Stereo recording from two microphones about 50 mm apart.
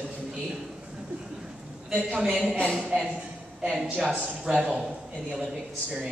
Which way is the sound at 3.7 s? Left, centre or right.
Right.